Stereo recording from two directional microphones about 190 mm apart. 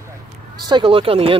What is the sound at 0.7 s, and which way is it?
Speech, 25° right (ahead or behind).